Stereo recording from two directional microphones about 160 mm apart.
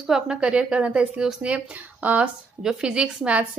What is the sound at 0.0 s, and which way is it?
A woman's voice, 5° right (ahead or behind).